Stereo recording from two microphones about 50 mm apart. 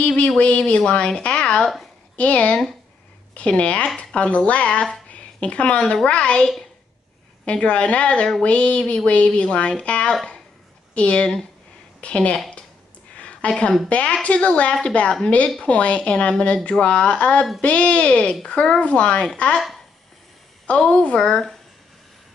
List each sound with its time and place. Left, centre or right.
0.0 s a woman's voice: left
7.6 s speech: left
13.2 s a sound: left
13.8 s speech: left
20.9 s speech: left
21.2 s speech: centre